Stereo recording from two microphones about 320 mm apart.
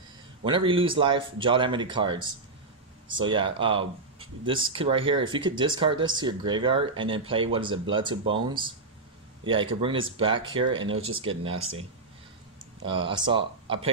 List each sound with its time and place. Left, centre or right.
0.4 s speech: centre
12.8 s speech: centre